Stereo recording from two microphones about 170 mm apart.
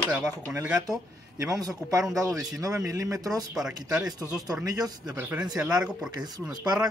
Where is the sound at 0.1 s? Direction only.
5° right (ahead or behind).